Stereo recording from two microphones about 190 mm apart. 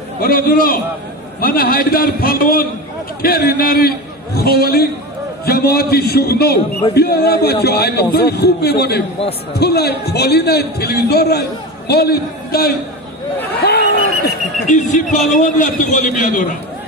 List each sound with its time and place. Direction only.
0.2 s a man's voice: 50° left (ahead or behind)